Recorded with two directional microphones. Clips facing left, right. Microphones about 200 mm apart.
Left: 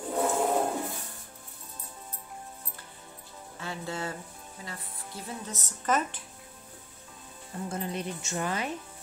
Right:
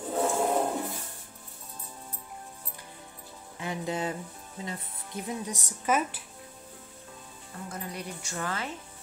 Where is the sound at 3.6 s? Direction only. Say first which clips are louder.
Right 4 dB; 15° right (ahead or behind).